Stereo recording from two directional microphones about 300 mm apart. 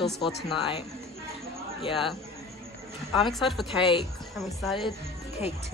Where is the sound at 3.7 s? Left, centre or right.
Centre.